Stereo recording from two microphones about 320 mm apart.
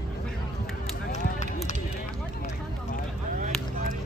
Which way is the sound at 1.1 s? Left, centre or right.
Left.